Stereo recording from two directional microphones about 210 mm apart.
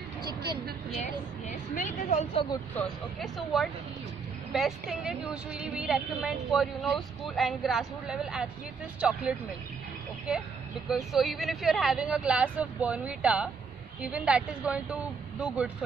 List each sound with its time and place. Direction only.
1.0 s speech: 35° left (ahead or behind)
2.8 s speech: centre (ahead or behind)
10.9 s speech: centre (ahead or behind)